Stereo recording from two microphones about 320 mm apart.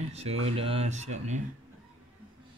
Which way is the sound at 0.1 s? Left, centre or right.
Centre.